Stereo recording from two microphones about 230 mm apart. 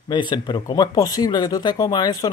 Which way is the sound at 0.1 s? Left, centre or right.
Centre.